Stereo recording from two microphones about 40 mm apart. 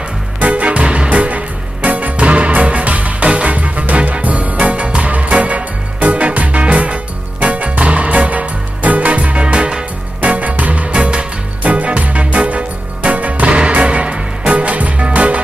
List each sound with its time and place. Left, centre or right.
0.4 s music: right
10.3 s music: right
10.9 s music: right
11.6 s music: right